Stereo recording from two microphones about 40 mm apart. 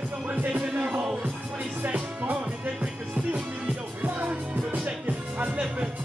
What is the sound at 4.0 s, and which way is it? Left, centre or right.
Music, right.